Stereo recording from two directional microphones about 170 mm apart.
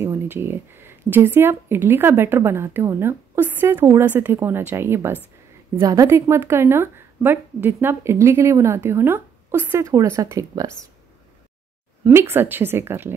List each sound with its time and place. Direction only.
0.0 s speech: 15° right (ahead or behind)
12.0 s speech: 15° right (ahead or behind)